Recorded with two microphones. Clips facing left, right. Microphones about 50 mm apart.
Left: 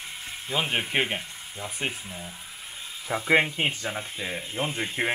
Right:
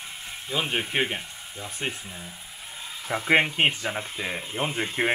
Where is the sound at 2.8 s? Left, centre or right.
Centre.